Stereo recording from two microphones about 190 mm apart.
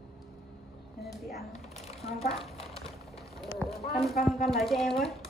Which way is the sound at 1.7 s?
35° left (ahead or behind).